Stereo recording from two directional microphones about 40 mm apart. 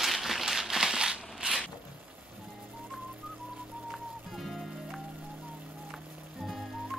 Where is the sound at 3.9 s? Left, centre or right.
Centre.